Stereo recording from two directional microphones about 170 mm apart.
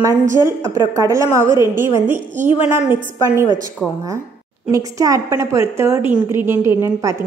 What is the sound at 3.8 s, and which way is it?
Speech, 5° left (ahead or behind).